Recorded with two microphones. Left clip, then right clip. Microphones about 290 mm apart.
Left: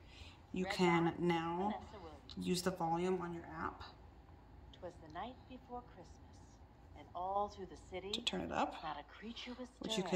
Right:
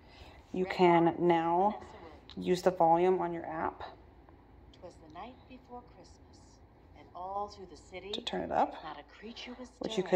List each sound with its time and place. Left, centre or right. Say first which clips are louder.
0.2 s speech: right 8 dB; centre
4.8 s a sound: even; left
7.2 s a sound: right 1 dB; left
7.5 s speech: right 1 dB; left
8.1 s speech: right 6 dB; centre
9.3 s speech: right 3 dB; centre
9.8 s speech: right 5 dB; centre